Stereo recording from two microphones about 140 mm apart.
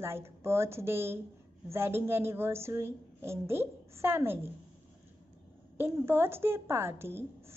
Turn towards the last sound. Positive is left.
turn(degrees=-15)  # may be behind; listen again after turning